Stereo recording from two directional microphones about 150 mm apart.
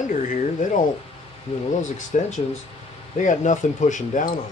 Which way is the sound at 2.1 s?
50° left (ahead or behind).